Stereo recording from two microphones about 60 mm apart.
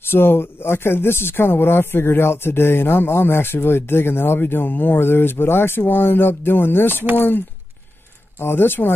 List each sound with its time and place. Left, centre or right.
0.1 s speech: left